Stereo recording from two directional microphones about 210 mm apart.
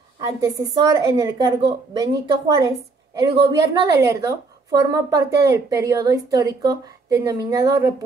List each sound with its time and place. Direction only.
0.2 s a woman's voice: 15° right (ahead or behind)